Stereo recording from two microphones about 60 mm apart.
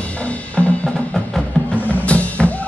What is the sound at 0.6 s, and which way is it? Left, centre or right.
Drum, centre.